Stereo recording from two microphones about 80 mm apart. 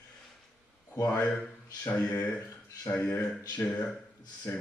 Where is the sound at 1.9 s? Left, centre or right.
Centre.